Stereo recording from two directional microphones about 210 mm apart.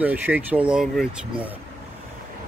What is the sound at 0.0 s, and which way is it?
Speech, 10° right (ahead or behind).